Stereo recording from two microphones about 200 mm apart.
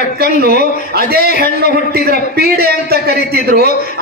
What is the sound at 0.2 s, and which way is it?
A man's voice, 50° right (ahead or behind).